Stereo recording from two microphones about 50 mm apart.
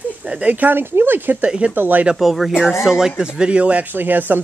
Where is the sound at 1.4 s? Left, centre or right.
Right.